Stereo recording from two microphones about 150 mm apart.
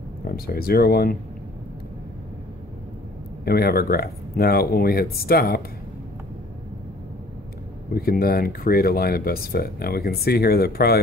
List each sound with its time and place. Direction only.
0.3 s speech: 85° left
3.4 s speech: 90° left
7.9 s speech: 85° left